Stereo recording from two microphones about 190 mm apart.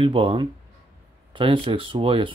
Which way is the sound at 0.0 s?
25° right (ahead or behind).